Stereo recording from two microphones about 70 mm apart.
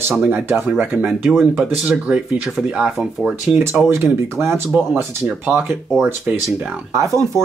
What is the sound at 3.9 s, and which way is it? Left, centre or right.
Speech, right.